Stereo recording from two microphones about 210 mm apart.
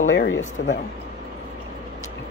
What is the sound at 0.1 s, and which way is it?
Speech, 60° left (ahead or behind).